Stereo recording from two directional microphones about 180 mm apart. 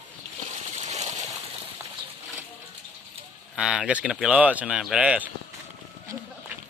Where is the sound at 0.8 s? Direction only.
40° right (ahead or behind).